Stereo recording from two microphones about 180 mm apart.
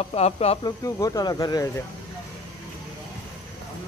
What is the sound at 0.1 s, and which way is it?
Speech, 35° left (ahead or behind).